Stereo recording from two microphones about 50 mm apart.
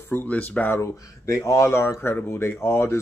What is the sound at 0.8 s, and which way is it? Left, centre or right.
Speech, left.